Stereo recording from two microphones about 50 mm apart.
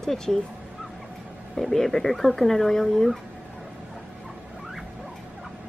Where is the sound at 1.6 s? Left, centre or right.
Centre.